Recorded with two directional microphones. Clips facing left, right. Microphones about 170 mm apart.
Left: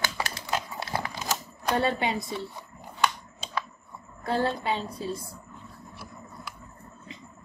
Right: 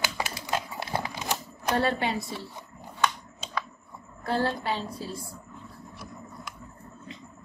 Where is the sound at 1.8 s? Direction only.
20° left (ahead or behind).